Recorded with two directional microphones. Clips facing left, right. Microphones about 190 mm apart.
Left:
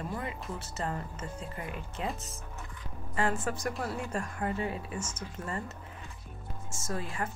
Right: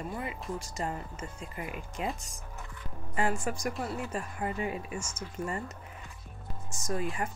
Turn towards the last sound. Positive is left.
turn(degrees=-15)  # may be behind; listen again after turning